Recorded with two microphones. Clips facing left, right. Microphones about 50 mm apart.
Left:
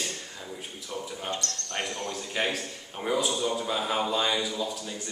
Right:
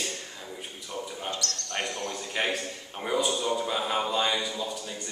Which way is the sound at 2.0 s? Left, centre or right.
Centre.